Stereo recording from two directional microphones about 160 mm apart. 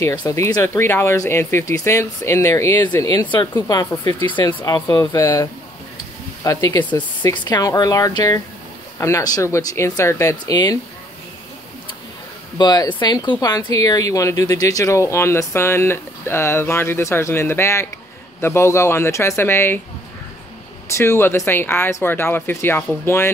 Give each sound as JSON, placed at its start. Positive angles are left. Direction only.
{"t": 0.0, "sound": "speech", "side_deg": 20}
{"t": 4.0, "sound": "speech", "side_deg": -40}
{"t": 4.3, "sound": "speech", "side_deg": 30}
{"t": 4.6, "sound": "speech", "side_deg": 15}
{"t": 12.5, "sound": "speech", "side_deg": 25}
{"t": 20.9, "sound": "speech", "side_deg": 15}